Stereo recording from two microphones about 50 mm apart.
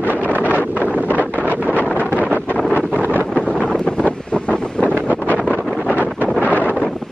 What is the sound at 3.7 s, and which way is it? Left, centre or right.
Wind noise, left.